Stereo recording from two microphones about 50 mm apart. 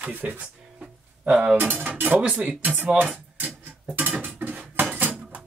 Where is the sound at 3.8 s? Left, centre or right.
Right.